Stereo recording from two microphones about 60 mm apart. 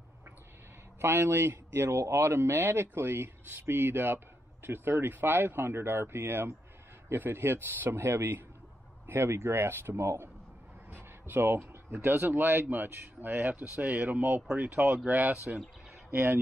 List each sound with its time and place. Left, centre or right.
1.0 s speech: right
10.9 s a sound: right
12.0 s speech: right
16.1 s speech: right